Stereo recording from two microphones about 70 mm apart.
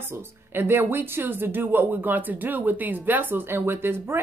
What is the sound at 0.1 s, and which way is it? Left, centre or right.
A woman's voice, right.